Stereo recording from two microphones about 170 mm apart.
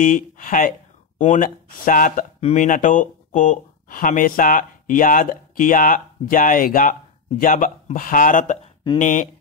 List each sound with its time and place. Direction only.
0.0 s speech: 50° left (ahead or behind)